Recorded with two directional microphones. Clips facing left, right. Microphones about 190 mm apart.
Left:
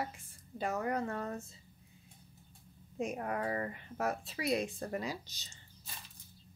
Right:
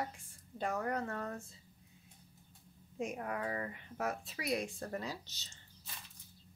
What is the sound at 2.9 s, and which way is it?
Speech, 35° left (ahead or behind).